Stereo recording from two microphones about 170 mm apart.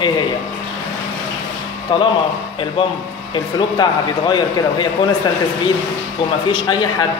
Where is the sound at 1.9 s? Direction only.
25° left (ahead or behind).